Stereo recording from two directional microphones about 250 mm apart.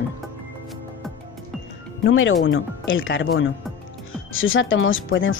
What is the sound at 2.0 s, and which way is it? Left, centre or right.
Speech, left.